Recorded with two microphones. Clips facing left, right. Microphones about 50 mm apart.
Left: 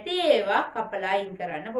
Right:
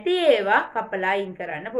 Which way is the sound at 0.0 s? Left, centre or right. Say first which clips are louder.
Right 4 dB; right.